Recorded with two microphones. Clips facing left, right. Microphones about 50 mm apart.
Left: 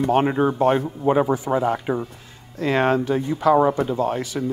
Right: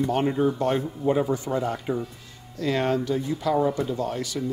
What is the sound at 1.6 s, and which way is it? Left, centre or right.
Speech, centre.